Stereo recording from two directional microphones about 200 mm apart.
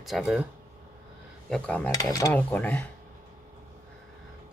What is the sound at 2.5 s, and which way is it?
Speech, 5° left (ahead or behind).